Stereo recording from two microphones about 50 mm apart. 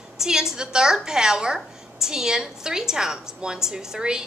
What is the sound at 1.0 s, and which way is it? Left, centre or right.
A woman's voice, centre.